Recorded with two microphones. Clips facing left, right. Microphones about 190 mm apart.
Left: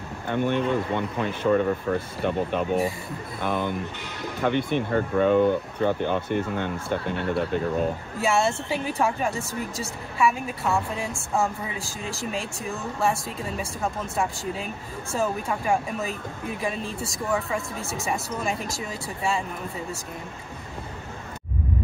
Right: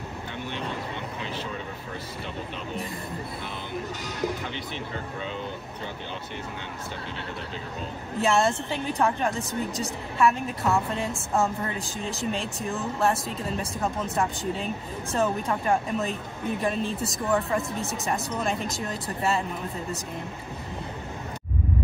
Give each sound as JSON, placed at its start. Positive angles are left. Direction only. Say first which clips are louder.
{"t": 0.3, "sound": "speech", "louder": "left 12 dB", "side_deg": 50}
{"t": 8.2, "sound": "a woman's voice", "louder": "right 1 dB", "side_deg": 0}